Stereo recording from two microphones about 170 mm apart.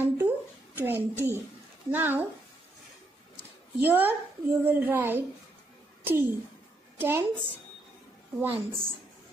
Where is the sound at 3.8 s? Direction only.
10° right (ahead or behind).